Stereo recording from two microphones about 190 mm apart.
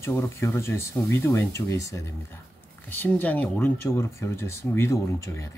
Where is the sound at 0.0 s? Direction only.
15° left (ahead or behind).